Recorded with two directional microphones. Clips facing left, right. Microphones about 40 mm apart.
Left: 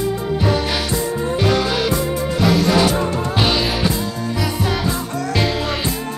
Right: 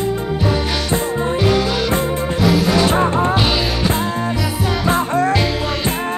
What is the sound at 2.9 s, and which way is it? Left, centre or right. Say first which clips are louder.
Music: right 5 dB; right.